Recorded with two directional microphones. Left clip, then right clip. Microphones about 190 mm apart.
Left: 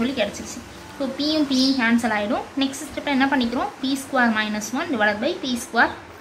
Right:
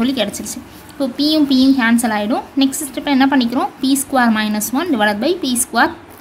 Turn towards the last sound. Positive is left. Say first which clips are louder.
# right 5 dB
turn(degrees=-50)  # may be behind; listen again after turning